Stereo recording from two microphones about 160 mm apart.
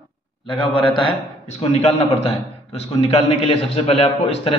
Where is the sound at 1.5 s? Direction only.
45° left (ahead or behind).